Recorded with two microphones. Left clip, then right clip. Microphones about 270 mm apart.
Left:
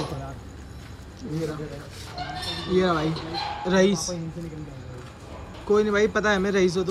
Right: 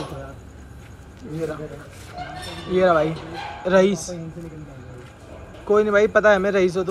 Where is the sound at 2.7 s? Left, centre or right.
Centre.